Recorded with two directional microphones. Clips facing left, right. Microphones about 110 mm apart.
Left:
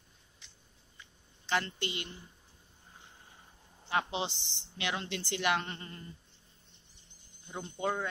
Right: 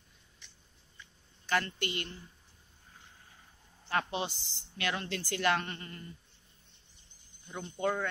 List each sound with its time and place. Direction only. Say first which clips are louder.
1.4 s a woman's voice: right 1 dB; 20° left (ahead or behind)
3.8 s a woman's voice: even; 20° left (ahead or behind)
7.4 s speech: even; 25° left (ahead or behind)